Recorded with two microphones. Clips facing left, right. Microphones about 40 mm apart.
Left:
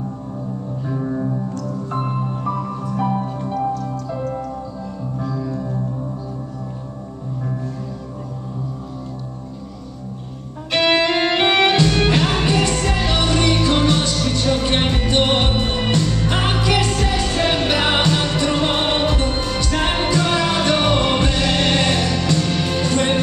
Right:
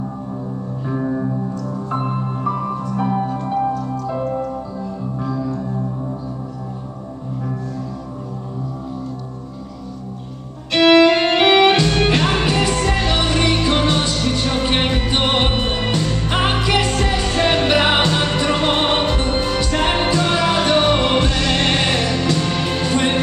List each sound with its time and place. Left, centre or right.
0.8 s music: centre
3.3 s music: right
11.3 s music: centre
21.2 s music: centre
21.5 s music: centre